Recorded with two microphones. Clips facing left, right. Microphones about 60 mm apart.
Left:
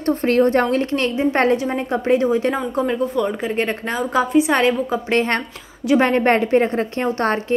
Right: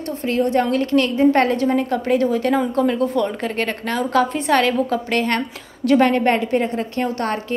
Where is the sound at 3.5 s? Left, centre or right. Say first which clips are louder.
Left 1 dB; centre.